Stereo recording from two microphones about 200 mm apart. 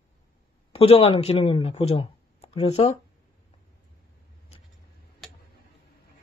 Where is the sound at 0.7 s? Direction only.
30° left (ahead or behind).